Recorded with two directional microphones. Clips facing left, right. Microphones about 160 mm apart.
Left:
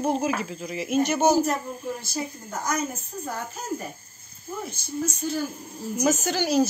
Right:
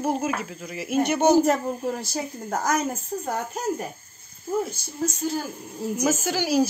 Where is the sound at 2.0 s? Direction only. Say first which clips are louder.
Right 2 dB; 80° right.